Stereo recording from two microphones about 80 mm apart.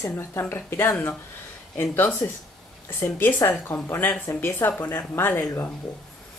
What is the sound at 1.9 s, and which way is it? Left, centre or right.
A woman's voice, left.